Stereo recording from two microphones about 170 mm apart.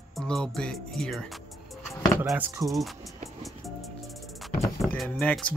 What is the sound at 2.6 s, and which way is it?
Speech, centre (ahead or behind).